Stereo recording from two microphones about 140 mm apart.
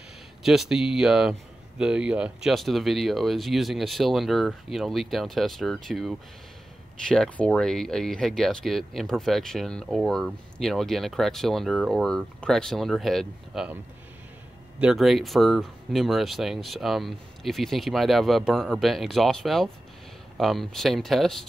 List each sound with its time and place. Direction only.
0.4 s speech: centre (ahead or behind)
14.8 s speech: 5° right (ahead or behind)